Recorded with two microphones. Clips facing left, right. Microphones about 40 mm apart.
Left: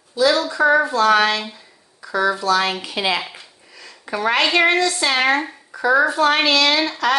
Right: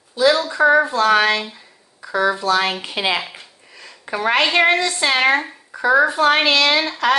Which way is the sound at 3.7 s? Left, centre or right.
Right.